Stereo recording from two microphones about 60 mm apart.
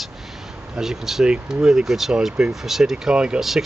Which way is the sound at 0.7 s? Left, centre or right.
Centre.